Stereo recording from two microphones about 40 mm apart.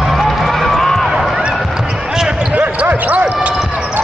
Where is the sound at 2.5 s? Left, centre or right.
Right.